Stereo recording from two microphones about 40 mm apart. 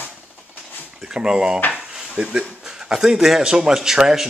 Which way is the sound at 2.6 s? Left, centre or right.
Centre.